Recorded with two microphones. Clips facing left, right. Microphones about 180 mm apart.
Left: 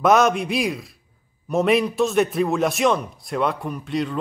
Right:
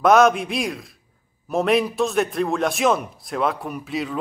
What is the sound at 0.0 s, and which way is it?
A man's voice, centre (ahead or behind).